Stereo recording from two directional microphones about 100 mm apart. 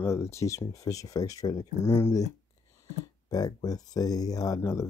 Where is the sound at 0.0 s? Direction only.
30° left (ahead or behind).